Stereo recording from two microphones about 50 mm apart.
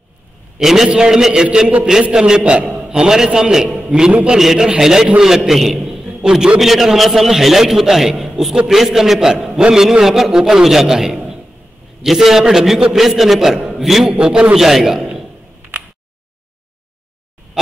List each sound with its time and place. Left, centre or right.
0.6 s a man's voice: centre; by 4.4 s right
4.4 s a man's voice: centre
6.6 s a man's voice: centre; by 9.8 s right
9.8 s a man's voice: centre
14.0 s a man's voice: centre